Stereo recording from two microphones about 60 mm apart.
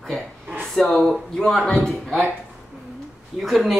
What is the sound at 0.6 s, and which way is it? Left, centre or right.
Speech, centre.